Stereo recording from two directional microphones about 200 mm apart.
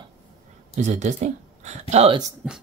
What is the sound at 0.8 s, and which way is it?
Speech, 35° right (ahead or behind).